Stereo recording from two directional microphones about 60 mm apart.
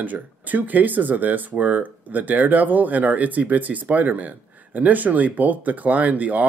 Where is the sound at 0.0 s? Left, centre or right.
Right.